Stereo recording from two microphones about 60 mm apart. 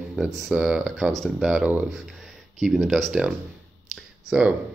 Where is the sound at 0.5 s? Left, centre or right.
Centre.